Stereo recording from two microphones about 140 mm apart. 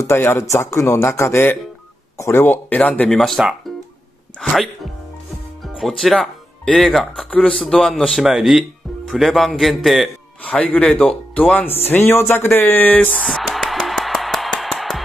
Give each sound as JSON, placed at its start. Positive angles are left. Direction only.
{"t": 0.0, "sound": "speech", "side_deg": 15}
{"t": 5.8, "sound": "speech", "side_deg": 0}
{"t": 10.4, "sound": "speech", "side_deg": 10}
{"t": 13.3, "sound": "music", "side_deg": 0}